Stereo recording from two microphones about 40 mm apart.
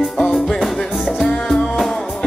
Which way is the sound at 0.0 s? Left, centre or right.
Centre.